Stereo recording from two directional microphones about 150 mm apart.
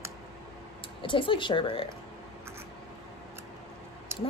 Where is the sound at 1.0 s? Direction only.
35° left (ahead or behind).